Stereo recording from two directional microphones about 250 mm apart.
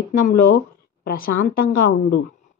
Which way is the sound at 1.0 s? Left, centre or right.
Left.